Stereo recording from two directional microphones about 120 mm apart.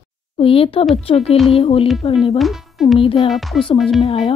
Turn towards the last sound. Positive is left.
turn(degrees=55)  # may be behind; listen again after turning